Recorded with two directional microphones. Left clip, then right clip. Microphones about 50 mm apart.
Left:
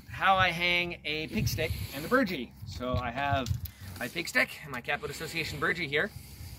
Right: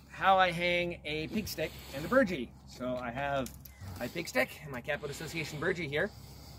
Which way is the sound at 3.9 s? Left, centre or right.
Right.